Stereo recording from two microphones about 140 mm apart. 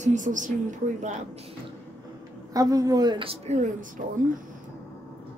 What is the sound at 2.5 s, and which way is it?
Speech, 25° right (ahead or behind).